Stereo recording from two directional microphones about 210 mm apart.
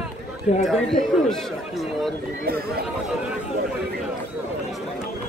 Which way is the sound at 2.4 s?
45° right (ahead or behind).